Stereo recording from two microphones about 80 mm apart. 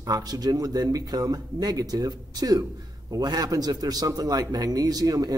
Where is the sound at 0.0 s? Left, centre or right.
Right.